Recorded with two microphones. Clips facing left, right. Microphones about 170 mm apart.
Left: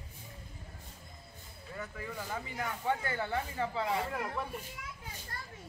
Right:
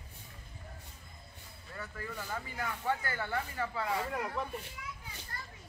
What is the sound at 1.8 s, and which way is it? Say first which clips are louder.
Speech: left 1 dB; 15° left (ahead or behind).